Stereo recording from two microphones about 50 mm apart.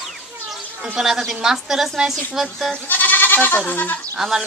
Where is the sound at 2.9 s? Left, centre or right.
Left.